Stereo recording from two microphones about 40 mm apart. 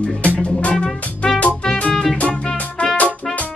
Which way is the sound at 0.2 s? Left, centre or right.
Left.